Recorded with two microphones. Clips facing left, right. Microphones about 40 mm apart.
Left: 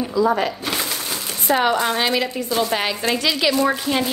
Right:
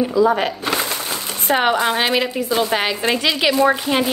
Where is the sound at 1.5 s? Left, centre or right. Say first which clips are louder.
Right 1 dB; right.